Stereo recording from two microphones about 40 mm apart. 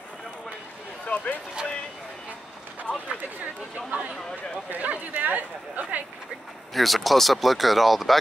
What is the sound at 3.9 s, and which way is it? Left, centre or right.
Speech, right.